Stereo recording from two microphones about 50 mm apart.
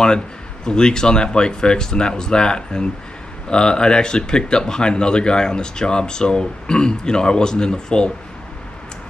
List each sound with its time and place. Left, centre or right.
0.7 s speech: centre